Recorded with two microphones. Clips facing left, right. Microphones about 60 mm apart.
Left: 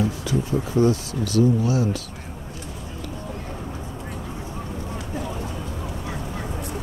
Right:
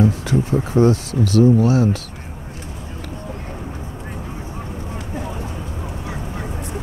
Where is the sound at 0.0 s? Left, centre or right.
Right.